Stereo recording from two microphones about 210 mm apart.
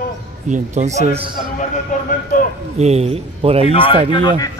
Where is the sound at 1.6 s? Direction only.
40° left (ahead or behind).